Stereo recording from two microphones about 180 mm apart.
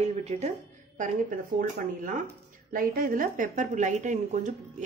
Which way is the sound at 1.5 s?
50° right (ahead or behind).